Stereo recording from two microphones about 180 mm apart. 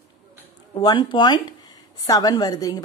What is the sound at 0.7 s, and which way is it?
A woman's voice, 25° left (ahead or behind).